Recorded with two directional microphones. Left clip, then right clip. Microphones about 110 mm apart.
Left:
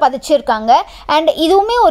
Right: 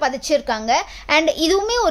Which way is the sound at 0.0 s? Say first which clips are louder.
Left 7 dB; 40° left (ahead or behind).